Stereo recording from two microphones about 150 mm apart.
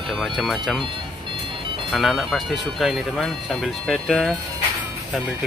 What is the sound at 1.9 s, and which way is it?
Speech, centre (ahead or behind).